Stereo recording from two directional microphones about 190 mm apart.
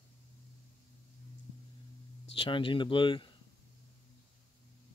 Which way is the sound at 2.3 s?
30° left (ahead or behind).